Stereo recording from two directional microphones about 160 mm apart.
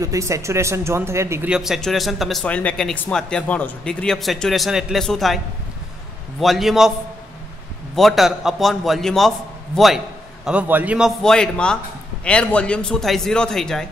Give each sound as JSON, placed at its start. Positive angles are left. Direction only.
{"t": 0.0, "sound": "speech", "side_deg": -20}
{"t": 1.5, "sound": "speech", "side_deg": 0}
{"t": 6.4, "sound": "speech", "side_deg": 0}
{"t": 7.9, "sound": "speech", "side_deg": 0}